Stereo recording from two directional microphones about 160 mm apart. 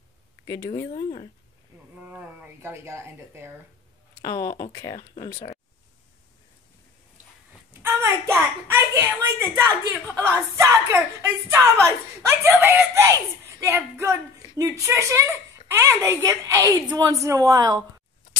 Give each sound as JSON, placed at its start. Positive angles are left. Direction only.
{"t": 0.7, "sound": "speech", "side_deg": 30}
{"t": 2.0, "sound": "a child's voice", "side_deg": -10}
{"t": 4.2, "sound": "speech", "side_deg": 20}
{"t": 7.8, "sound": "a sound", "side_deg": -15}
{"t": 10.1, "sound": "a child's voice", "side_deg": -15}